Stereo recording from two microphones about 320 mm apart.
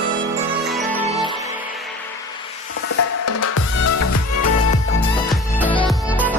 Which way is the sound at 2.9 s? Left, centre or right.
Left.